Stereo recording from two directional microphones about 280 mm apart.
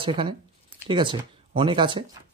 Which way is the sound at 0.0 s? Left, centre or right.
Centre.